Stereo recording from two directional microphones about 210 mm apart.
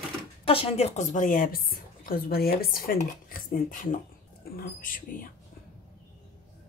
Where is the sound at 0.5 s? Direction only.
25° left (ahead or behind).